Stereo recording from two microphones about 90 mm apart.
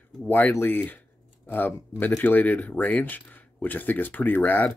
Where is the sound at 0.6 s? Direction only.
20° left (ahead or behind).